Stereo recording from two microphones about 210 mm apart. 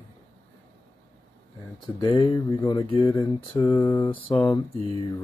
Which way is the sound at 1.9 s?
20° left (ahead or behind).